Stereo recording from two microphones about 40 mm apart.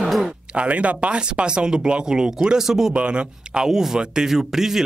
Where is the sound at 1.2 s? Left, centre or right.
Right.